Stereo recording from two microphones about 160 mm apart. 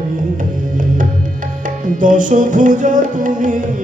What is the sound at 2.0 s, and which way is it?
Music, 55° right (ahead or behind).